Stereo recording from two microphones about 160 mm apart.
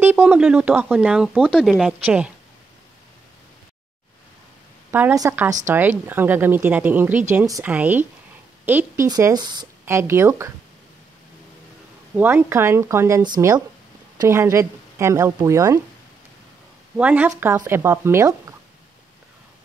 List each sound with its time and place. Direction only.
0.0 s speech: 10° right (ahead or behind)
5.1 s a woman's voice: 15° right (ahead or behind)
9.8 s speech: 15° right (ahead or behind)
12.2 s a woman's voice: 15° right (ahead or behind)
16.9 s speech: 10° right (ahead or behind)